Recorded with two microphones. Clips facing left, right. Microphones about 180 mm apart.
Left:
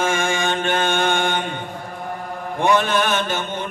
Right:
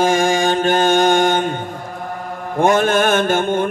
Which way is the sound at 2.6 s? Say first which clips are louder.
Right 4 dB; 45° right (ahead or behind).